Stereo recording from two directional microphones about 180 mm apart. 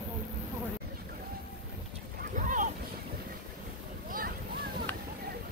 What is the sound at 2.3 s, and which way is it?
Boat, 45° right (ahead or behind).